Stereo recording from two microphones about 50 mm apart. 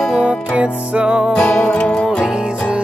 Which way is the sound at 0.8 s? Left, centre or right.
Right.